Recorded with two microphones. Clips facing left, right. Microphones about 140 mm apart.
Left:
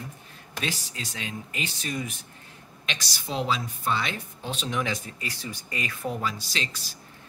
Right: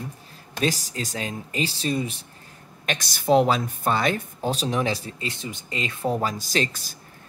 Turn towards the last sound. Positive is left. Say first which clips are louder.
# right 9 dB
turn(degrees=-50)  # may be behind; listen again after turning